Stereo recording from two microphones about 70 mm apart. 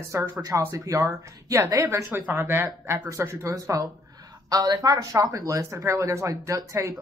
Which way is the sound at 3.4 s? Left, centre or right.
Right.